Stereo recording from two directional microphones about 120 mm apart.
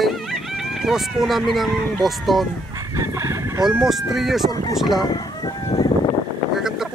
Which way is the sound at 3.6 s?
5° right (ahead or behind).